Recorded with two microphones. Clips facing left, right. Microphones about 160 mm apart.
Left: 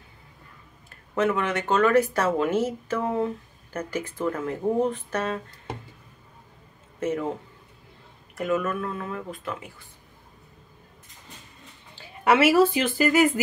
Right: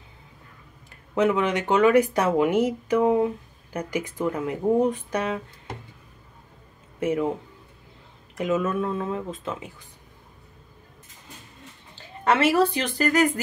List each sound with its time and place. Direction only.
0.8 s speech: 15° right (ahead or behind)
7.0 s speech: 10° right (ahead or behind)
8.4 s speech: 20° right (ahead or behind)
12.3 s speech: 5° left (ahead or behind)